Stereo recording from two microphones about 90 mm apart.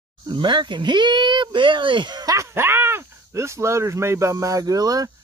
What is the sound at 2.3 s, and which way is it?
Speech, 25° right (ahead or behind).